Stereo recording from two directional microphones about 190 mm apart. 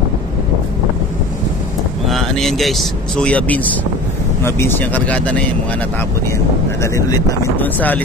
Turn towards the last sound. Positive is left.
turn(degrees=10)  # may be behind; listen again after turning